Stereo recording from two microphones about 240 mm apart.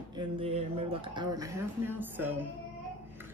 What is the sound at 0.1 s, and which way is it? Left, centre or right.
Speech, right.